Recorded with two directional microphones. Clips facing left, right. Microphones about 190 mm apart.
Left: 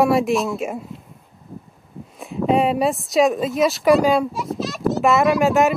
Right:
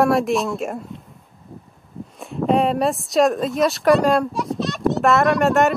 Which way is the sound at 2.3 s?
Centre (ahead or behind).